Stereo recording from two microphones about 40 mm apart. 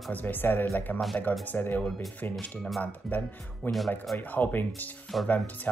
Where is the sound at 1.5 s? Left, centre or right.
Left.